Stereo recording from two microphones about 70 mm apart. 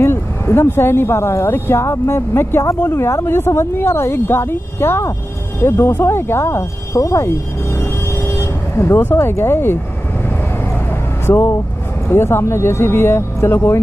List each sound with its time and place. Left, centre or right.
0.0 s speech: left
10.9 s vehicle: left
12.1 s speech: left